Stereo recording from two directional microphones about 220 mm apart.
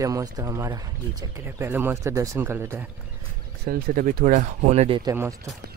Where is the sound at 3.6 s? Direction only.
40° right (ahead or behind); by 5.1 s 25° right (ahead or behind).